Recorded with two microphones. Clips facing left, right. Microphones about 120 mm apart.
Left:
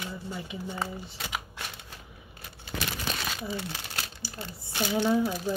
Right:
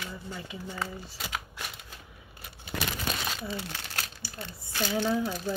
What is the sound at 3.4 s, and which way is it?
Speech, 15° left (ahead or behind).